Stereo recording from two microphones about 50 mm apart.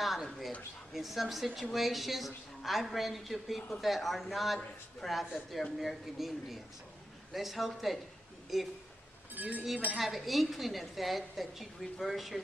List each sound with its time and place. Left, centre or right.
0.0 s a sound: centre
0.9 s a woman's voice: centre
9.3 s speech: right
9.9 s a woman's voice: centre